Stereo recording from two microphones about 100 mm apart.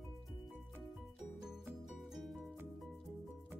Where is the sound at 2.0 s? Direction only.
Centre (ahead or behind).